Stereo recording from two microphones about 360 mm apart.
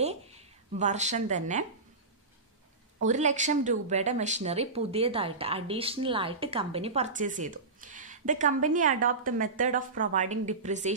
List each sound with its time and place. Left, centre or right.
0.0 s a woman's voice: centre
3.1 s speech: centre